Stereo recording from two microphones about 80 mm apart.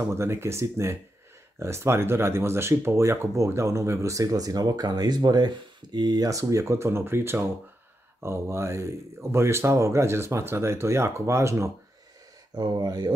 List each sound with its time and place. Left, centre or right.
0.0 s speech: right
12.5 s speech: right